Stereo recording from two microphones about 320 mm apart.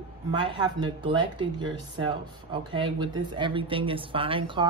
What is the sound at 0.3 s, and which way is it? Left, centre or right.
Speech, centre.